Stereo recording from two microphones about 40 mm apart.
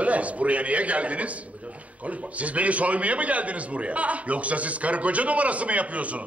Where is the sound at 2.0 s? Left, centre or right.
Right.